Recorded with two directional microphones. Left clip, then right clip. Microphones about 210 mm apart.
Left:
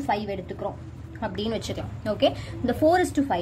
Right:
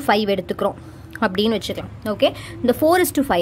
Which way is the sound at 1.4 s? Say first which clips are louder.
Right 8 dB; 30° right (ahead or behind).